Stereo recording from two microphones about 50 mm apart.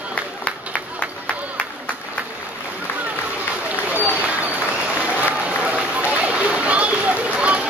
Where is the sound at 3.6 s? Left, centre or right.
Right.